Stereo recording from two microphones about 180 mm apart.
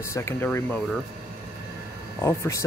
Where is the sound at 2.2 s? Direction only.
15° left (ahead or behind).